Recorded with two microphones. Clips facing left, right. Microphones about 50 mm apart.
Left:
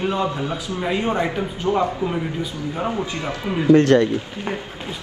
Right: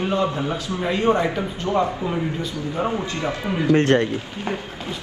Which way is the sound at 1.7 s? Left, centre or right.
Left.